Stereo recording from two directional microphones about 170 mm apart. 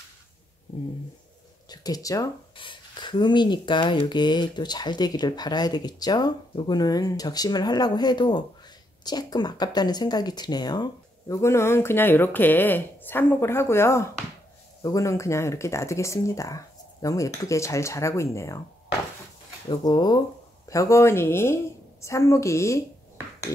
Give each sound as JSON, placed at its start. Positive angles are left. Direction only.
{"t": 1.7, "sound": "speech", "side_deg": 20}
{"t": 19.7, "sound": "speech", "side_deg": 25}